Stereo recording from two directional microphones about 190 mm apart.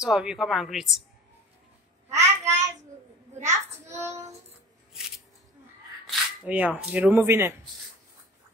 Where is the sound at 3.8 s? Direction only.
15° right (ahead or behind).